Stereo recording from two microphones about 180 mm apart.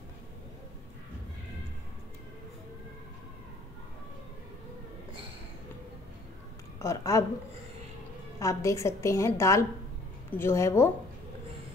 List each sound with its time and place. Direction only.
6.8 s a woman's voice: 15° left (ahead or behind)
8.4 s a woman's voice: 15° left (ahead or behind)